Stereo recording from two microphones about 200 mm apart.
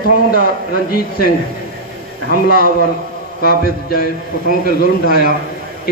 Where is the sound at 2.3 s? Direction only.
50° left (ahead or behind).